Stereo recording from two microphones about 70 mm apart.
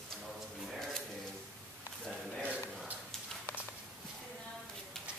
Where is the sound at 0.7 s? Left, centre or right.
Centre.